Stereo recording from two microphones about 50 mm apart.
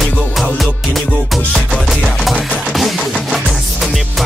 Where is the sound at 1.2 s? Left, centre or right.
Centre.